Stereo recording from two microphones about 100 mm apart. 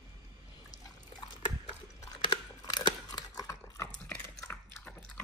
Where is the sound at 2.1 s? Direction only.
45° left (ahead or behind).